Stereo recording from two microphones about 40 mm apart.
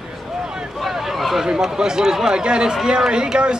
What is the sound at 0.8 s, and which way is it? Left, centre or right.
Vehicle, centre.